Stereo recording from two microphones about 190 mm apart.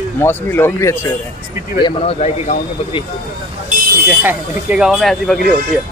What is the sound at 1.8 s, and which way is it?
Speech, 35° left (ahead or behind).